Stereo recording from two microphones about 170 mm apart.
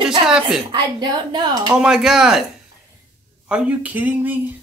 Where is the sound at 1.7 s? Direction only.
5° right (ahead or behind).